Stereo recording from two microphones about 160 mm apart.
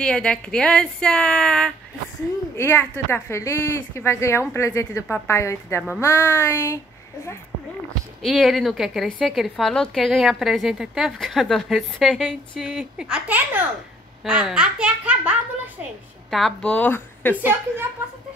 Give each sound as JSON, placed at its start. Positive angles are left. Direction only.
{"t": 0.0, "sound": "a woman's voice", "side_deg": 5}
{"t": 8.2, "sound": "a woman's voice", "side_deg": 0}
{"t": 16.3, "sound": "a woman's voice", "side_deg": 0}
{"t": 17.4, "sound": "a child's voice", "side_deg": -15}